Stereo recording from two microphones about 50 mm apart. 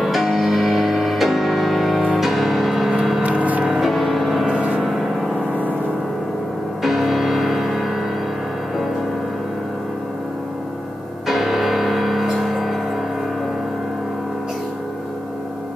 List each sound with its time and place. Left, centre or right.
0.0 s music: centre
3.2 s a sound: right
3.6 s music: centre
4.6 s music: right
4.8 s music: centre
6.8 s music: centre
11.2 s music: centre